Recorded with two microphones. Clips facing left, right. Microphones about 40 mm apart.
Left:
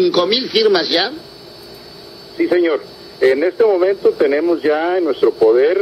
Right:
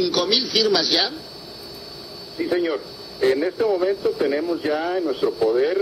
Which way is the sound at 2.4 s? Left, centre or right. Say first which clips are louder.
Left 8 dB; left.